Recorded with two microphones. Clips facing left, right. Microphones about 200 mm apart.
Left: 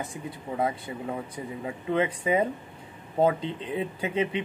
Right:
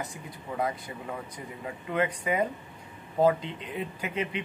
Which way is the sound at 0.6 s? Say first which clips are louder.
Left 2 dB; 25° left (ahead or behind).